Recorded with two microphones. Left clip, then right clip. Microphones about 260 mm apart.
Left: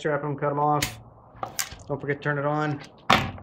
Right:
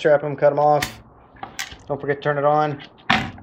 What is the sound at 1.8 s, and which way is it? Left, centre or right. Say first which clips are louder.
Speech: right 8 dB; centre.